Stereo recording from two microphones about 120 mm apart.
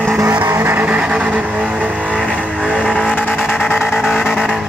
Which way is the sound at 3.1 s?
20° left (ahead or behind).